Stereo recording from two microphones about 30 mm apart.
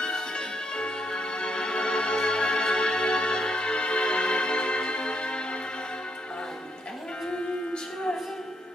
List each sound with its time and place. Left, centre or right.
0.0 s music: left
7.2 s music: left